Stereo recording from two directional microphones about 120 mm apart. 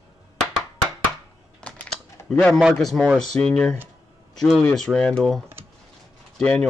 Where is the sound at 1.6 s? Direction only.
10° left (ahead or behind).